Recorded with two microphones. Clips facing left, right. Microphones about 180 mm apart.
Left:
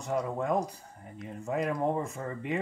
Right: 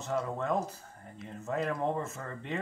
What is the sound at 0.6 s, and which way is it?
Speech, 5° right (ahead or behind).